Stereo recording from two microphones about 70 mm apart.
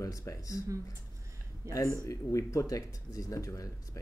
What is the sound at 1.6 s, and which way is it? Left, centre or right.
Chuckle, right.